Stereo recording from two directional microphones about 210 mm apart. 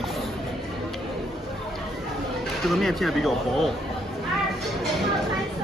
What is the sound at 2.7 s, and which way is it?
Speech, centre (ahead or behind).